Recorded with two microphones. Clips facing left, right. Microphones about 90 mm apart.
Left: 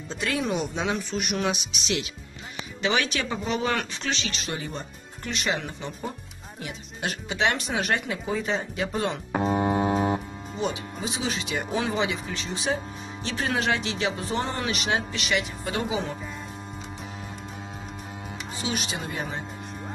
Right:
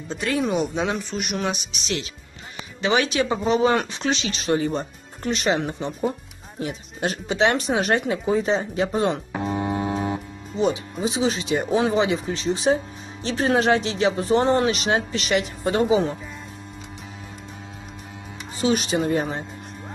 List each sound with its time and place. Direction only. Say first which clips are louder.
0.1 s speech: right 4 dB; centre (ahead or behind)
2.9 s speech: right 6 dB; 20° right (ahead or behind)
4.5 s speech: right 11 dB; 40° right (ahead or behind)
9.3 s a sound: left 2 dB; 20° left (ahead or behind)
10.7 s speech: right 7 dB; 30° right (ahead or behind)
18.6 s speech: right 11 dB; 40° right (ahead or behind)